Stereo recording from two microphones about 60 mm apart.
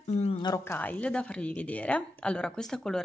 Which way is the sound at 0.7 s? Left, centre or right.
Left.